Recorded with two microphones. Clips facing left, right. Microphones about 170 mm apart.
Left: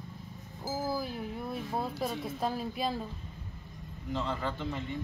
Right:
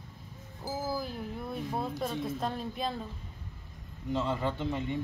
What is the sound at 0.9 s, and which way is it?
Speech, centre (ahead or behind).